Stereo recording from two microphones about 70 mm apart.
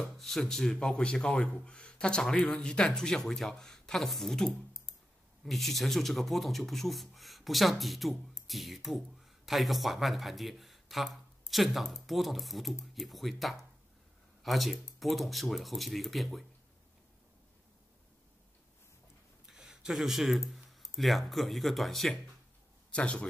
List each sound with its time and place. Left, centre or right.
0.0 s speech: centre
19.4 s speech: centre
22.9 s speech: centre